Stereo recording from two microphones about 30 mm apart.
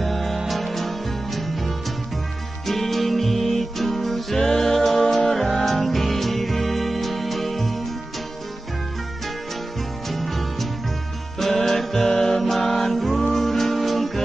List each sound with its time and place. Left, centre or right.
0.0 s music: centre
10.0 s music: centre
11.5 s music: centre